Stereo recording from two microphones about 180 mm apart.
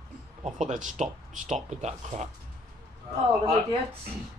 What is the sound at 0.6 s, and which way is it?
A woman's voice, 45° right (ahead or behind).